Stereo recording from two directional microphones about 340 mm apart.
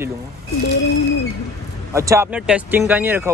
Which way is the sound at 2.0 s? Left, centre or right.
Centre.